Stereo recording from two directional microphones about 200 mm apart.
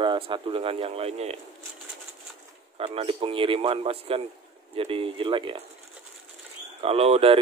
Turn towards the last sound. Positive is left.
turn(degrees=-30)  # may be behind; listen again after turning